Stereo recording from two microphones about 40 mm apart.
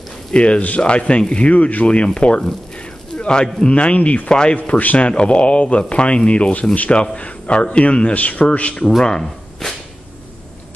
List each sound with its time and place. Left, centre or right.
0.3 s speech: left
1.5 s a man's voice: left
2.1 s speech: left
2.4 s squish: left
3.6 s a man's voice: left
4.3 s speech: left
4.6 s a man's voice: left
9.0 s a sound: centre